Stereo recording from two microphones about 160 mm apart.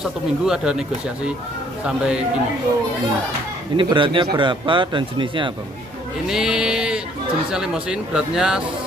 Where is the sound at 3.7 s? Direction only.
30° right (ahead or behind).